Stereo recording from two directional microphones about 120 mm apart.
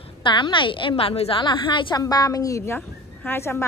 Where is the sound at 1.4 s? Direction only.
40° left (ahead or behind).